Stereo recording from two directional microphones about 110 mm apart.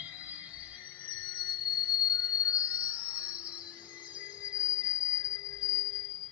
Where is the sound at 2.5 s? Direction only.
10° right (ahead or behind).